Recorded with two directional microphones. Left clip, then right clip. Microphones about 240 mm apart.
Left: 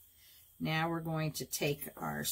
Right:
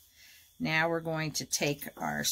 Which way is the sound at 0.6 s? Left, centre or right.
Right.